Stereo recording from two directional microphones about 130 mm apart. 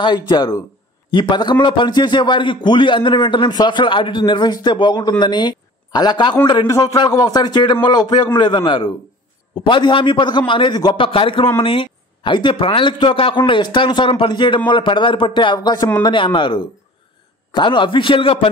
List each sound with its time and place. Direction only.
0.0 s a man's voice: 35° left (ahead or behind)